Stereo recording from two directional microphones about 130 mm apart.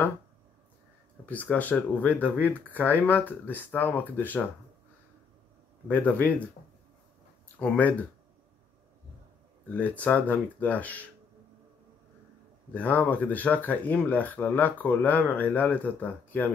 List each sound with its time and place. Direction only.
1.2 s speech: 10° left (ahead or behind)
5.9 s speech: 10° left (ahead or behind)
7.5 s speech: 10° left (ahead or behind)
9.7 s speech: 10° left (ahead or behind)
12.7 s speech: 10° left (ahead or behind)